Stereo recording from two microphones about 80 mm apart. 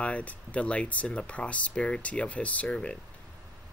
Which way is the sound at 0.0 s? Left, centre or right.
Centre.